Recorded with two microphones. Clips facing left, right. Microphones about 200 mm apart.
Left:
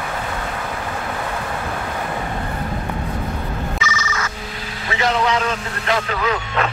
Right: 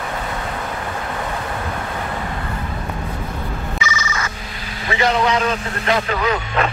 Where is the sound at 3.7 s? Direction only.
Centre (ahead or behind).